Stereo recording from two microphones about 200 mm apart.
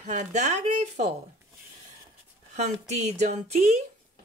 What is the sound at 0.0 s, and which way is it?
Speech, 35° right (ahead or behind).